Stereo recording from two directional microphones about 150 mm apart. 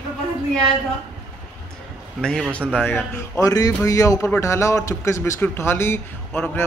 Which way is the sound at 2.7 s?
10° left (ahead or behind).